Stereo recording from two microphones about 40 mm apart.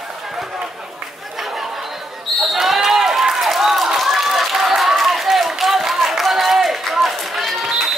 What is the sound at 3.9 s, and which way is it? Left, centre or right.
Run, centre.